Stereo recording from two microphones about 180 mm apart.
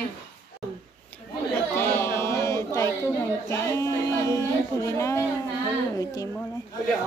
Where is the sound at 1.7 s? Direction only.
15° left (ahead or behind).